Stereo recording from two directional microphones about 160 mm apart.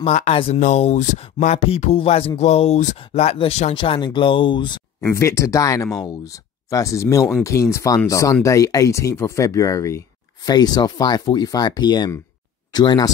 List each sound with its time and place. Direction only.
0.0 s speech: 40° left (ahead or behind)
5.0 s speech: 20° left (ahead or behind)